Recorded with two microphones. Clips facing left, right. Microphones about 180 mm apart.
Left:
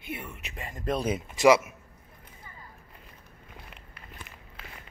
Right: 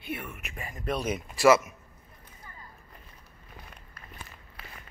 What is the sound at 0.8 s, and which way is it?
Speech, 30° left (ahead or behind).